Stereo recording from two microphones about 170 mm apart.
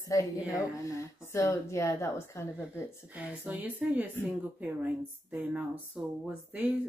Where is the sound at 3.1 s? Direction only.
10° right (ahead or behind).